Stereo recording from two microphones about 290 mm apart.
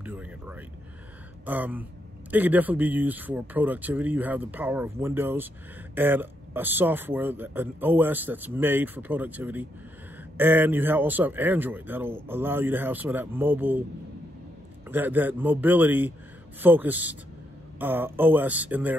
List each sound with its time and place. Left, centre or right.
0.0 s a sound: centre
1.4 s speech: centre
14.9 s speech: centre